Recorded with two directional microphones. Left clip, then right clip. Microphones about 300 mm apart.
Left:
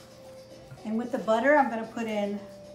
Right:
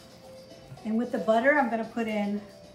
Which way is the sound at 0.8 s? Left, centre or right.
Centre.